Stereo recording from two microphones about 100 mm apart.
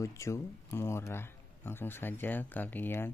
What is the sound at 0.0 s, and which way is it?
Speech, 30° left (ahead or behind).